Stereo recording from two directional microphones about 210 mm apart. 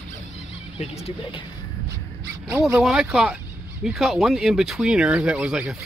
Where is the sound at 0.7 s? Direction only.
30° left (ahead or behind).